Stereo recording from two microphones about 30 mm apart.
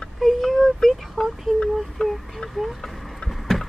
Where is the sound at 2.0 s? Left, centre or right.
Left.